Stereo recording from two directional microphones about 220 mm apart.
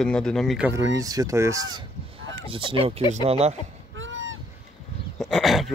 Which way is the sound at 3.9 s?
60° right (ahead or behind).